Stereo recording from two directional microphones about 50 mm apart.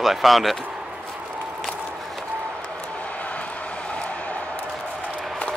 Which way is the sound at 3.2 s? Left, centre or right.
Left.